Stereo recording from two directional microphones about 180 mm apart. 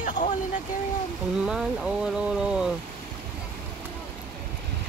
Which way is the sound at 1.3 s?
5° right (ahead or behind).